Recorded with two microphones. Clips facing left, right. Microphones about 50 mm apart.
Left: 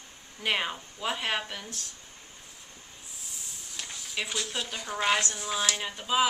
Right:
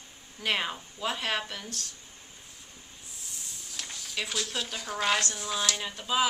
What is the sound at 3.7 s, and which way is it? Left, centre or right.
Speech, centre.